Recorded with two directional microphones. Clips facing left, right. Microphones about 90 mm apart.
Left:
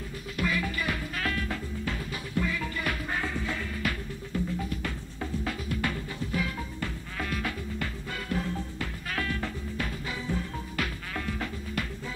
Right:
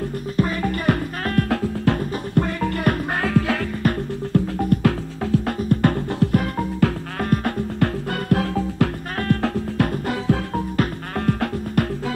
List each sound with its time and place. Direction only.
0.4 s music: 45° right (ahead or behind); by 3.6 s 80° right
3.8 s music: 45° right (ahead or behind)
4.3 s music: 60° right (ahead or behind)
5.6 s music: 50° right (ahead or behind); by 10.6 s 75° right (ahead or behind)
10.8 s music: 55° right (ahead or behind)